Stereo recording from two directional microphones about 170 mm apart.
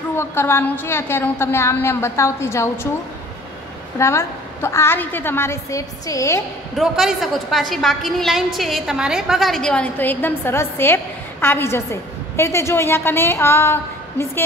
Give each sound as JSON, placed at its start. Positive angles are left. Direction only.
{"t": 0.1, "sound": "a woman's voice", "side_deg": 15}
{"t": 4.0, "sound": "a woman's voice", "side_deg": 15}
{"t": 6.8, "sound": "a woman's voice", "side_deg": 0}